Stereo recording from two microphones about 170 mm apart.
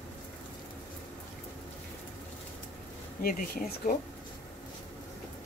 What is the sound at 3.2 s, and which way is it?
Speech, 60° left (ahead or behind).